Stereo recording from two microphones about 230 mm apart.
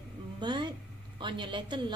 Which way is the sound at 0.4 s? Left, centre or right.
Centre.